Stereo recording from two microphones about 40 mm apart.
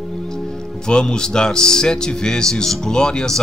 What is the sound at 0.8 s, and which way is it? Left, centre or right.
A man's voice, centre.